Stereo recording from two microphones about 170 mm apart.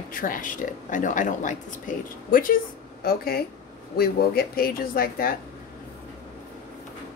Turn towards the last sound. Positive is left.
turn(degrees=60)  # may be behind; listen again after turning